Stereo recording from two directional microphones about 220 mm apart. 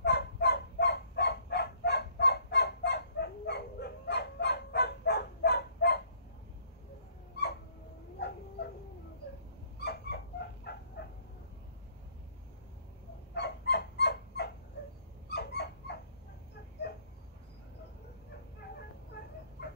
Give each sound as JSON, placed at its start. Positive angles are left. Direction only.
{"t": 0.0, "sound": "a sound", "side_deg": 50}
{"t": 9.8, "sound": "dog", "side_deg": 50}
{"t": 13.3, "sound": "dog", "side_deg": 50}